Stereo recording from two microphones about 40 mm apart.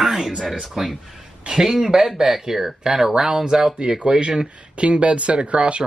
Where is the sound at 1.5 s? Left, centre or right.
Centre.